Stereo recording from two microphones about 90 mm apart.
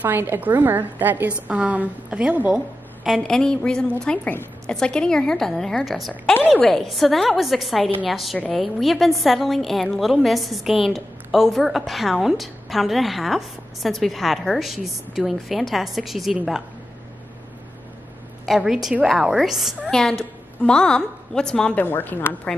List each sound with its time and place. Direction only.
0.0 s a woman's voice: 25° right (ahead or behind)
3.3 s a woman's voice: 5° left (ahead or behind)
18.4 s a woman's voice: 5° right (ahead or behind)
21.7 s a woman's voice: 20° left (ahead or behind)